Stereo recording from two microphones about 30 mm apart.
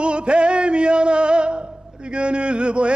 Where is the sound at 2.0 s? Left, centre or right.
Right.